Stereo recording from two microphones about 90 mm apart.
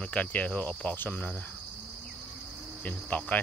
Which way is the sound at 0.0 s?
15° left (ahead or behind).